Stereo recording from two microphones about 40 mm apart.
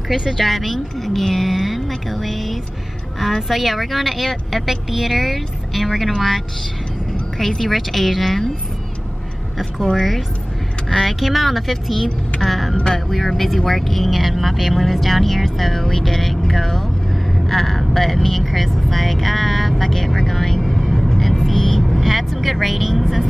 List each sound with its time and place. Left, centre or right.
0.3 s speech: centre
9.9 s speech: centre
12.4 s music: centre
12.7 s music: centre
13.1 s speech: centre